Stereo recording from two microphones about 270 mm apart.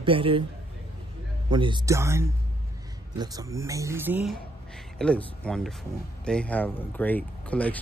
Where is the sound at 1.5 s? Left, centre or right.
Centre.